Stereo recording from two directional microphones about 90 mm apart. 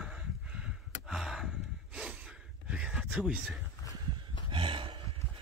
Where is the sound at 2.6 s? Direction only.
10° right (ahead or behind).